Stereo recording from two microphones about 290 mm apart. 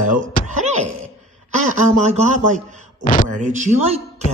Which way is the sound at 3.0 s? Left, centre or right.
Left.